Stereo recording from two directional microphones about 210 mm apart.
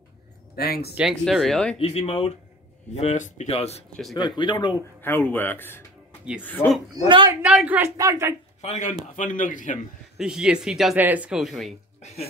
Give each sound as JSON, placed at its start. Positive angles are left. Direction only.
{"t": 0.6, "sound": "speech", "side_deg": 45}
{"t": 0.9, "sound": "speech", "side_deg": 0}
{"t": 1.8, "sound": "speech", "side_deg": 30}
{"t": 5.0, "sound": "speech", "side_deg": 10}
{"t": 7.1, "sound": "speech", "side_deg": -25}
{"t": 7.4, "sound": "a woman's voice", "side_deg": -5}
{"t": 8.5, "sound": "speech", "side_deg": 35}
{"t": 10.1, "sound": "speech", "side_deg": -5}